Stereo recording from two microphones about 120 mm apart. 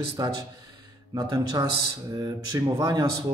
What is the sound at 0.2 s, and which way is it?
Speech, 35° right (ahead or behind).